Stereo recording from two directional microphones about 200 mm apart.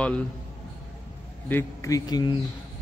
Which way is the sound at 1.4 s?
15° left (ahead or behind).